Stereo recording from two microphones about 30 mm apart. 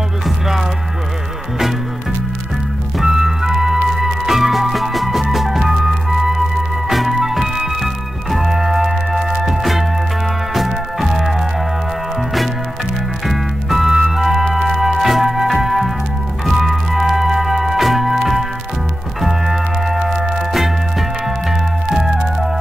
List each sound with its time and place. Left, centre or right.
3.0 s music: centre
13.3 s music: centre